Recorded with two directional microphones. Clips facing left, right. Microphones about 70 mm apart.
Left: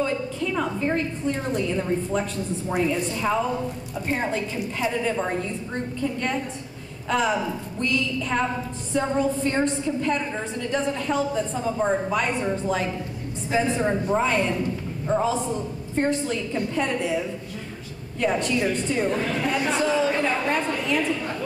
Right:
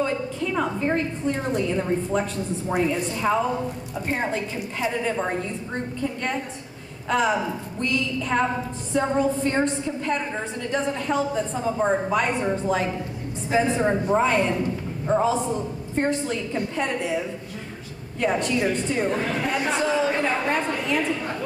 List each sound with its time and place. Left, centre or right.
0.0 s a woman's voice: right
13.9 s a man's voice: right
15.5 s a woman's voice: right